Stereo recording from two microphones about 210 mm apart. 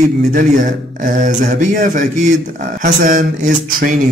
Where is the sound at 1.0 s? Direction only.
40° right (ahead or behind).